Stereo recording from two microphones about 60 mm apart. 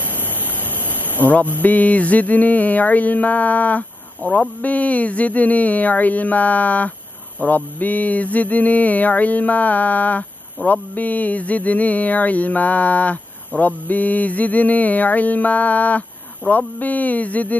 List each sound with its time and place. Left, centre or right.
0.0 s speech: left
7.3 s mantra: left